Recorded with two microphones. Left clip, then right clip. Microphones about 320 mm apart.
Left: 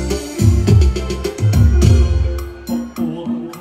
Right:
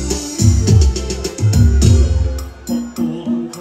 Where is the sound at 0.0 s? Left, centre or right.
Left.